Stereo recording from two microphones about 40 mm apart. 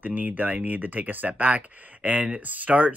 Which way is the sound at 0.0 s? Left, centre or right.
Right.